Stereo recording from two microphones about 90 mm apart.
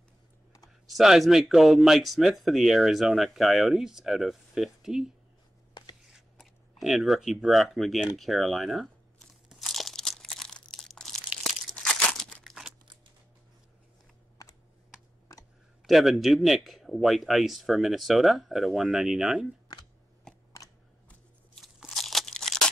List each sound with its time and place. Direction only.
0.8 s speech: centre (ahead or behind)
6.3 s speech: centre (ahead or behind)
9.5 s crunch: centre (ahead or behind)
11.7 s crumpling: 10° left (ahead or behind)
15.3 s a sound: 40° left (ahead or behind)
15.8 s speech: centre (ahead or behind)
21.7 s crunch: centre (ahead or behind)